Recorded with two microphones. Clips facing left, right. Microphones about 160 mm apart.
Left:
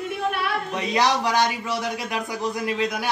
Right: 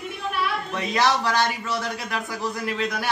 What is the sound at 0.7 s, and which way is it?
A man's voice, 15° left (ahead or behind).